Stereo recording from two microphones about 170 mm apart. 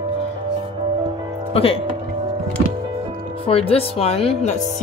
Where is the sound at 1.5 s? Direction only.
35° left (ahead or behind).